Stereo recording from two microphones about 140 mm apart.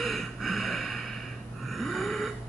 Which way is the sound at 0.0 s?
Centre (ahead or behind).